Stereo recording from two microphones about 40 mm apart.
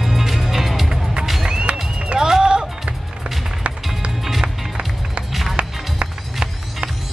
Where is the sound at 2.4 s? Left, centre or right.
Centre.